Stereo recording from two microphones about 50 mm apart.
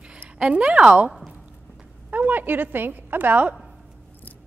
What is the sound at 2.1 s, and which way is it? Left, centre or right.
Speech, right.